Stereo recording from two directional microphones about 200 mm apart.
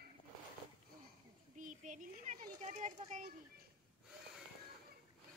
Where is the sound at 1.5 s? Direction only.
40° right (ahead or behind).